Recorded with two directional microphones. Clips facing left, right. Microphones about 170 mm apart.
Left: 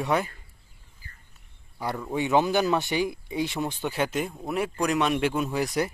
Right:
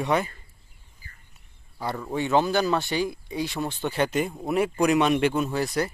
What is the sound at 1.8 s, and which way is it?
Speech, 10° left (ahead or behind).